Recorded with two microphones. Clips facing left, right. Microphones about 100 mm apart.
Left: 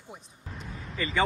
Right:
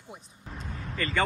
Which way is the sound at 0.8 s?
5° left (ahead or behind).